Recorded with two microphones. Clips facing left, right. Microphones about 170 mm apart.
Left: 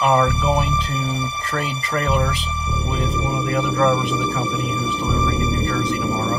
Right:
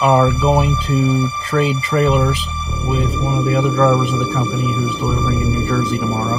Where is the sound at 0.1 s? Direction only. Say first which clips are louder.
Right 4 dB; 30° right (ahead or behind).